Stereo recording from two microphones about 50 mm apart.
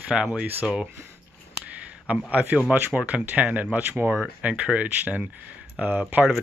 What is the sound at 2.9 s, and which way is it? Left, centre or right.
Speech, right.